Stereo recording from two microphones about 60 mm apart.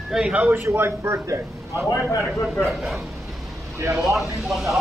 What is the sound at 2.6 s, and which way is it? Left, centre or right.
Speech, centre.